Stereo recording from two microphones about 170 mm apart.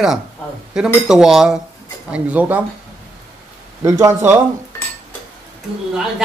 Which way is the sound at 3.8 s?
20° right (ahead or behind).